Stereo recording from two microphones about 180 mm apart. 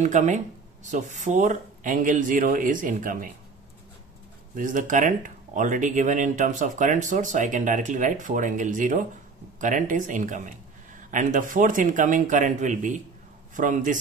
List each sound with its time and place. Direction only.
0.0 s speech: 40° right (ahead or behind)
4.6 s speech: 45° right (ahead or behind)